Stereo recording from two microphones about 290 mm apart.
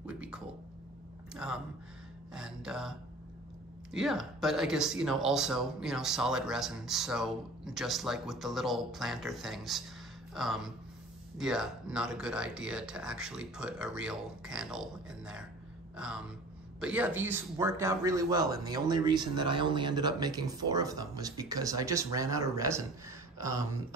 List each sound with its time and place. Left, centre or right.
0.0 s a sound: centre
1.3 s speech: centre
4.0 s a man's voice: centre